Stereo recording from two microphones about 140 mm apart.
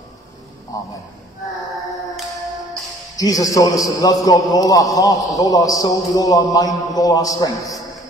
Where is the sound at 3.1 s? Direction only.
25° left (ahead or behind).